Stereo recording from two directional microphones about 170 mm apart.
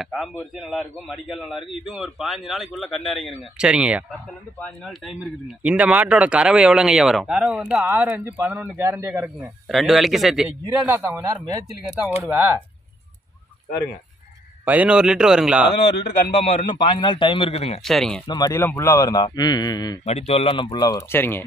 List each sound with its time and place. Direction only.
0.0 s speech: centre (ahead or behind)
5.6 s speech: 10° right (ahead or behind)
10.6 s a man's voice: 15° right (ahead or behind)
12.0 s a man's voice: 10° right (ahead or behind)
14.6 s speech: 10° right (ahead or behind)
16.4 s a man's voice: 30° left (ahead or behind)
17.8 s speech: 5° left (ahead or behind)
18.2 s a man's voice: 25° left (ahead or behind)
20.1 s a man's voice: 40° left (ahead or behind); by 21.5 s 10° left (ahead or behind)